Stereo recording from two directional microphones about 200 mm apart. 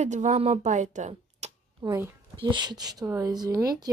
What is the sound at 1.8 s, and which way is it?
A woman's voice, 20° right (ahead or behind).